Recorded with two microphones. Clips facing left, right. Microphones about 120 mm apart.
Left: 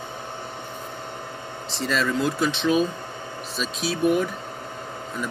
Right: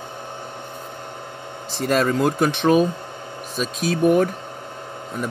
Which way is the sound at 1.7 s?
50° right (ahead or behind).